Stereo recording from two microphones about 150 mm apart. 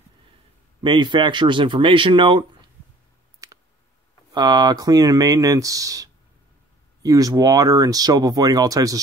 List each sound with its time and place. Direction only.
0.7 s speech: 30° right (ahead or behind)
3.4 s clicking: 25° right (ahead or behind)
4.3 s speech: 30° right (ahead or behind)